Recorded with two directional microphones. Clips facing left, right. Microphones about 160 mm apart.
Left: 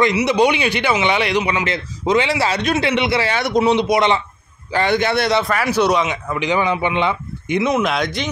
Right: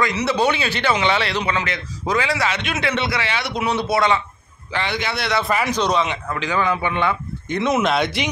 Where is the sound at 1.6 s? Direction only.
25° left (ahead or behind).